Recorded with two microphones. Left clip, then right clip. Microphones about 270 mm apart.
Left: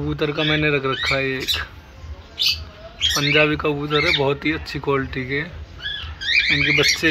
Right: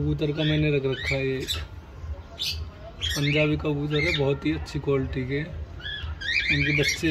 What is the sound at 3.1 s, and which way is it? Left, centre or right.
Speech, centre.